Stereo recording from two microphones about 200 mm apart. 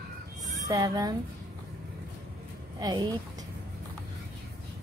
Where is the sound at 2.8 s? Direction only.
20° right (ahead or behind).